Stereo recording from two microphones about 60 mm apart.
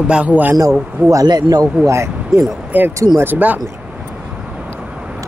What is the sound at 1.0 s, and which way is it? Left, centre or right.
Speech, right.